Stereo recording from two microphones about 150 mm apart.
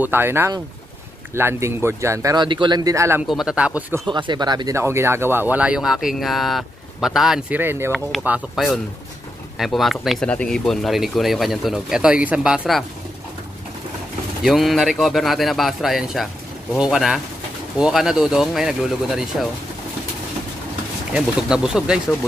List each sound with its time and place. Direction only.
0.0 s speech: 15° right (ahead or behind)
3.3 s speech: 5° right (ahead or behind)
4.1 s speech: 30° right (ahead or behind); by 7.9 s 15° right (ahead or behind)
7.9 s speech: centre (ahead or behind)
14.4 s speech: centre (ahead or behind)
21.1 s speech: 5° right (ahead or behind)